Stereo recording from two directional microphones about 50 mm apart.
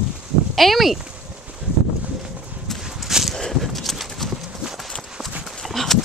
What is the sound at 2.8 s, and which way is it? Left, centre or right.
Walk, centre.